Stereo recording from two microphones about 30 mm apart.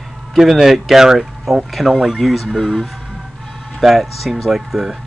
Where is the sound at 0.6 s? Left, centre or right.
Centre.